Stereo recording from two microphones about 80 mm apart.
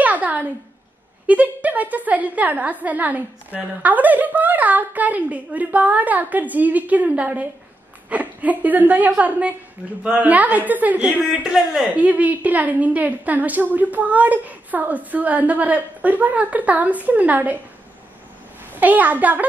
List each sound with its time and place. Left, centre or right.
0.0 s a sound: centre
1.2 s a woman's voice: centre
11.4 s a woman's voice: centre
18.8 s a woman's voice: right